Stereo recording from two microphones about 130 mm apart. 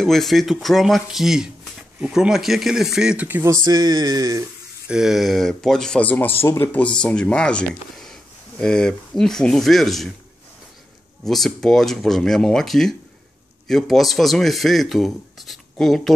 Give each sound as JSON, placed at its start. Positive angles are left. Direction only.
{"t": 0.0, "sound": "speech", "side_deg": 0}
{"t": 3.6, "sound": "a sound", "side_deg": -30}
{"t": 4.8, "sound": "speech", "side_deg": -5}
{"t": 11.2, "sound": "speech", "side_deg": 0}